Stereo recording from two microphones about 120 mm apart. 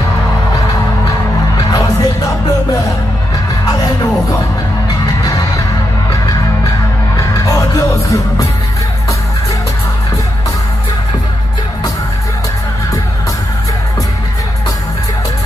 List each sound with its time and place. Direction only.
1.6 s music: 30° left (ahead or behind)
7.2 s music: 25° left (ahead or behind)